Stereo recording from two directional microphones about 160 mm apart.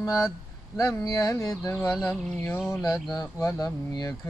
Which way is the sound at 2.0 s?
15° left (ahead or behind).